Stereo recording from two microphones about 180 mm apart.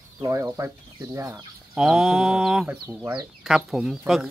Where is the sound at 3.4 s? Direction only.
Centre (ahead or behind).